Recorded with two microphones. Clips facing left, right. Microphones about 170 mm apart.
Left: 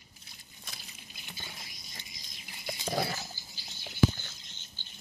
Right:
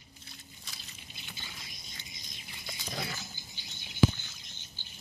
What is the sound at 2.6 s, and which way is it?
Pig, 30° left (ahead or behind).